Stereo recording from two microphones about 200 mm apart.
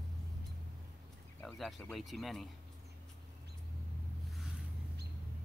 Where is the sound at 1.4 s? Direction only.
Centre (ahead or behind).